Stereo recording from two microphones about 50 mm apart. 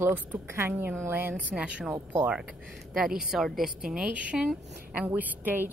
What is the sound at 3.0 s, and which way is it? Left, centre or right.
A woman's voice, centre.